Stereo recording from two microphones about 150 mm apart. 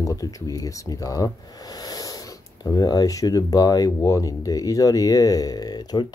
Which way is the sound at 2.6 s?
25° left (ahead or behind).